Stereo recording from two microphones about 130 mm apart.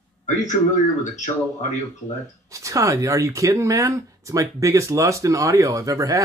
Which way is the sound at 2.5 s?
25° right (ahead or behind).